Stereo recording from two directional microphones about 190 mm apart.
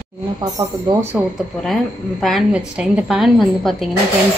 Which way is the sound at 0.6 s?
20° right (ahead or behind).